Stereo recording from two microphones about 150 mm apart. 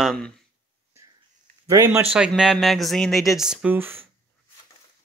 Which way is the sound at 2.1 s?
5° right (ahead or behind).